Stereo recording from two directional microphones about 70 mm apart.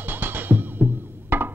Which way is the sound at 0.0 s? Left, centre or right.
Right.